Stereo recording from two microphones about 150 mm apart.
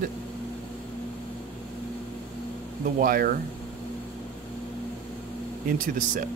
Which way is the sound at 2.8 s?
70° right (ahead or behind).